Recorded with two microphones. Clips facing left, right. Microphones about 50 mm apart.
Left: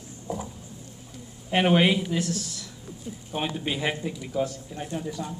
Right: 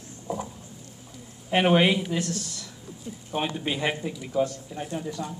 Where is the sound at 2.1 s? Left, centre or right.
Centre.